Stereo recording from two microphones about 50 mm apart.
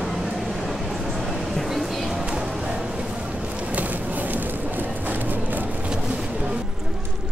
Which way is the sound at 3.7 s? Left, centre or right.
Right.